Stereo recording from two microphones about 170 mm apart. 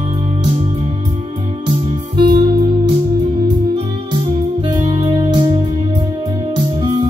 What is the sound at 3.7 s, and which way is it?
Music, 30° right (ahead or behind).